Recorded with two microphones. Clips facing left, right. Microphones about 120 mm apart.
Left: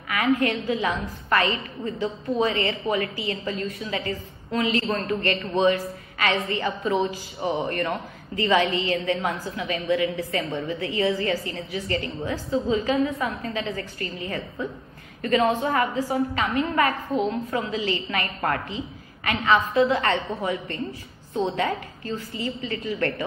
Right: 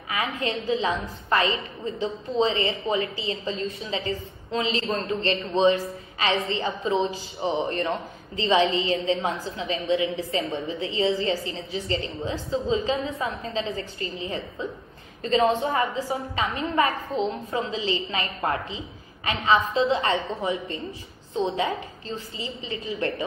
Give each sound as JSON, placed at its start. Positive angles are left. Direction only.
{"t": 0.1, "sound": "a woman's voice", "side_deg": -25}
{"t": 21.3, "sound": "a woman's voice", "side_deg": -20}